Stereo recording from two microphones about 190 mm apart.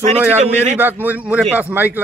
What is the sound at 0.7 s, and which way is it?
A man's voice, 10° right (ahead or behind).